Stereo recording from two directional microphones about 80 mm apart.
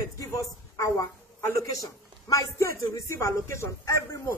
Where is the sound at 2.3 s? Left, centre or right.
Left.